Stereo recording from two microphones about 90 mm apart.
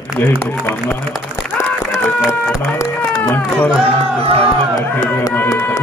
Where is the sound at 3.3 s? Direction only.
15° left (ahead or behind).